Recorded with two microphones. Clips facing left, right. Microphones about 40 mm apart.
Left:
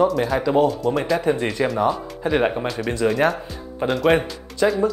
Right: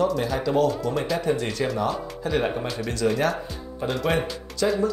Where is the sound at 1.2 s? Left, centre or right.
Left.